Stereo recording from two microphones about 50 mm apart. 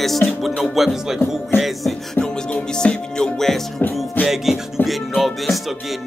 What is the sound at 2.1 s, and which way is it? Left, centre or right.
Music, centre.